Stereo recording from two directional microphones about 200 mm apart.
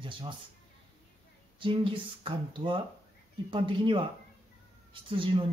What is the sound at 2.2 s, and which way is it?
Speech, 25° right (ahead or behind).